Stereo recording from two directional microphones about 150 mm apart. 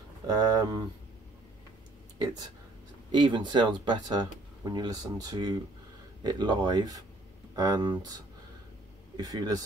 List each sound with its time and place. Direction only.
0.3 s speech: 25° right (ahead or behind)
2.1 s speech: 25° right (ahead or behind)